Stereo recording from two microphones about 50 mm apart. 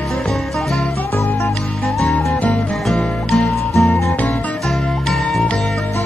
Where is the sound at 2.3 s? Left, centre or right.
Left.